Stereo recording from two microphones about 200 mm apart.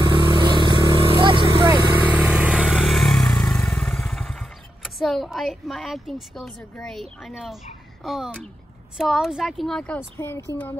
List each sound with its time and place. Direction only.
0.0 s vehicle: 25° right (ahead or behind)
2.0 s vehicle: 5° right (ahead or behind)
8.0 s speech: centre (ahead or behind)